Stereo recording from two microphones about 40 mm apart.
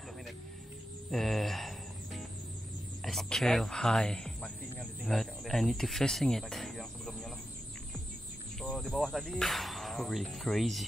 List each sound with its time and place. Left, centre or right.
1.1 s whip: centre
3.0 s speech: centre
5.0 s speech: centre
5.4 s a sound: centre
8.7 s whip: centre